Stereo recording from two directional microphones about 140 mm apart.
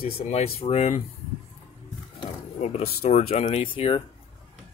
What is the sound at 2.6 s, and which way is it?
Speech, 50° left (ahead or behind).